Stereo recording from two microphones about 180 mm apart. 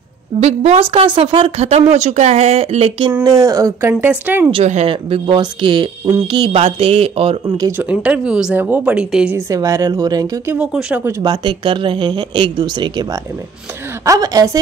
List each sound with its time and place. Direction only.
0.4 s a woman's voice: 40° right (ahead or behind)
3.1 s speech: 15° right (ahead or behind)
4.6 s speech: 35° right (ahead or behind)
7.7 s speech: 5° right (ahead or behind)
9.5 s speech: 20° right (ahead or behind)
11.1 s speech: 15° right (ahead or behind)
11.4 s speech: 30° right (ahead or behind)